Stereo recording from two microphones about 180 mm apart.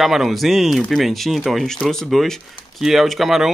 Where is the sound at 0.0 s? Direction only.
Centre (ahead or behind).